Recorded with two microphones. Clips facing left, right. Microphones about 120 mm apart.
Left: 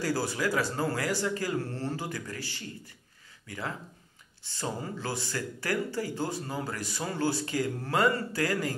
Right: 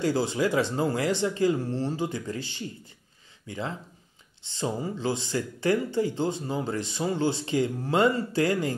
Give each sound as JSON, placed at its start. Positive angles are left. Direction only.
{"t": 0.0, "sound": "speech", "side_deg": -20}